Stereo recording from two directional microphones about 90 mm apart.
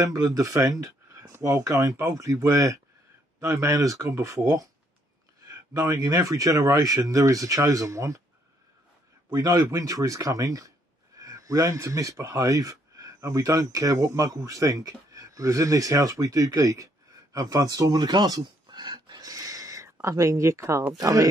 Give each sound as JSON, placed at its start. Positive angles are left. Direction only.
{"t": 0.0, "sound": "speech", "side_deg": -35}
{"t": 5.9, "sound": "speech", "side_deg": -35}
{"t": 9.3, "sound": "speech", "side_deg": -40}